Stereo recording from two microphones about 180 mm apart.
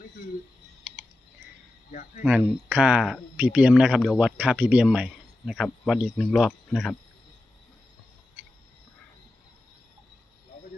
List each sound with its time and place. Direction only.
1.9 s speech: 45° left (ahead or behind)
2.2 s speech: 5° right (ahead or behind)